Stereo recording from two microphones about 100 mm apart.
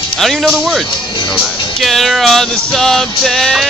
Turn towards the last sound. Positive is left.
turn(degrees=5)  # may be behind; listen again after turning